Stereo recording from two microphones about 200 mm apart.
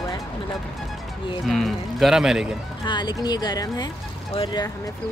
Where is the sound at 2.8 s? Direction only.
20° left (ahead or behind).